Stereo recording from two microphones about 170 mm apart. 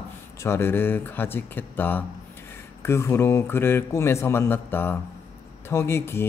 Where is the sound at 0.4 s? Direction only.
15° left (ahead or behind).